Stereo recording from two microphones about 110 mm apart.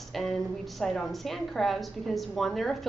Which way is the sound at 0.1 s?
Centre (ahead or behind).